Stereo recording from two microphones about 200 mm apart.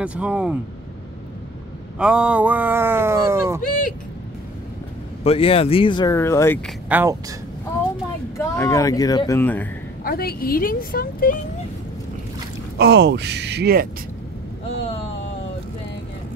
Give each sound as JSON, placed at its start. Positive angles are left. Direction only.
{"t": 0.0, "sound": "speech", "side_deg": -5}
{"t": 2.0, "sound": "speech", "side_deg": -5}
{"t": 5.2, "sound": "speech", "side_deg": 30}
{"t": 6.9, "sound": "speech", "side_deg": -15}
{"t": 8.4, "sound": "speech", "side_deg": 15}
{"t": 10.0, "sound": "a woman's voice", "side_deg": 50}
{"t": 12.7, "sound": "speech", "side_deg": -55}